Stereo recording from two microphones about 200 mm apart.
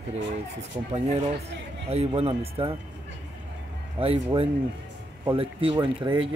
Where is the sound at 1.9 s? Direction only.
30° right (ahead or behind).